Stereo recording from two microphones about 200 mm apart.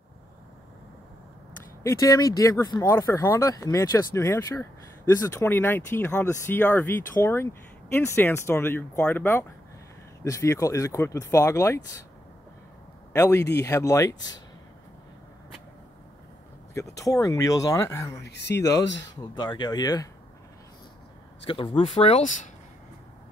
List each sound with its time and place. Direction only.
1.8 s speech: 15° left (ahead or behind)
13.1 s speech: 15° left (ahead or behind)
16.7 s speech: 15° left (ahead or behind)
18.2 s speech: 60° left (ahead or behind)
19.3 s speech: 20° left (ahead or behind)
21.5 s speech: 25° left (ahead or behind)